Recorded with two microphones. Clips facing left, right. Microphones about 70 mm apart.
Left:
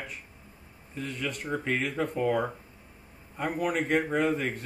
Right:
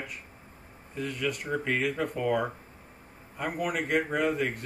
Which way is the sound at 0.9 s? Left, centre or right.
Centre.